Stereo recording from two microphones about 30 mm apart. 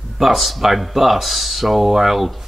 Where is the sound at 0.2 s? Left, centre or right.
Centre.